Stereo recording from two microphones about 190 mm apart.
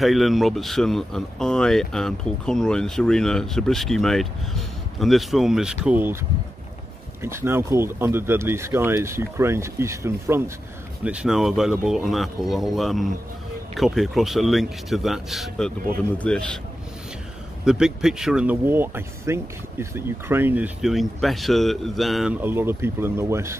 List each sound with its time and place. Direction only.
0.0 s speech: centre (ahead or behind)
7.2 s speech: 15° right (ahead or behind); by 16.4 s 5° left (ahead or behind)
17.6 s speech: 5° right (ahead or behind)